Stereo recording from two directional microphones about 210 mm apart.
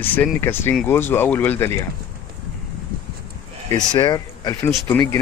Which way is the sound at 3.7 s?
20° left (ahead or behind).